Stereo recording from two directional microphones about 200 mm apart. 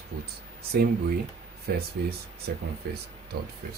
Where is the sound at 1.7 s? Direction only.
50° right (ahead or behind).